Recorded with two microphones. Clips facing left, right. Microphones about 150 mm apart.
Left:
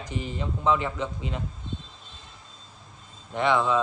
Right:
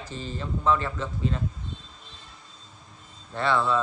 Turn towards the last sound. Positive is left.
turn(degrees=15)  # may be behind; listen again after turning